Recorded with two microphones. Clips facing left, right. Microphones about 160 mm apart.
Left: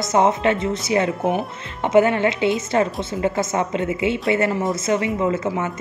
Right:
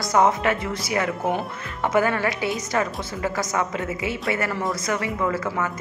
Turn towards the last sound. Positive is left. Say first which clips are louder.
# left 3 dB
turn(degrees=25)  # may be behind; listen again after turning